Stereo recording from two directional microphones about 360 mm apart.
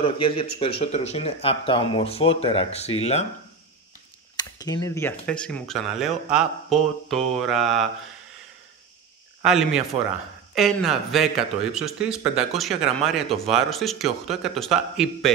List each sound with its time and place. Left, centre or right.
0.0 s speech: centre
4.4 s a man's voice: centre
9.4 s a man's voice: centre